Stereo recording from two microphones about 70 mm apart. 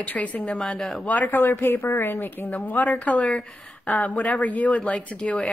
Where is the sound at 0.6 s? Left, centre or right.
Centre.